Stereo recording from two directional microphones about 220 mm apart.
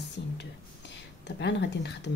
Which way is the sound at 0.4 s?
55° left (ahead or behind).